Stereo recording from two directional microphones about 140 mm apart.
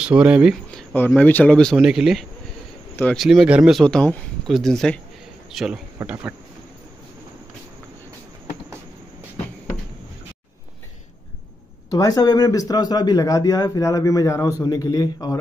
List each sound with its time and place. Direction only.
0.0 s speech: 10° right (ahead or behind)
0.9 s speech: 15° left (ahead or behind); by 2.2 s 5° right (ahead or behind)
3.0 s speech: 5° left (ahead or behind)
3.3 s speech: 5° right (ahead or behind)
3.8 s a man's voice: 10° left (ahead or behind); by 6.3 s 10° right (ahead or behind)
11.9 s speech: 25° left (ahead or behind)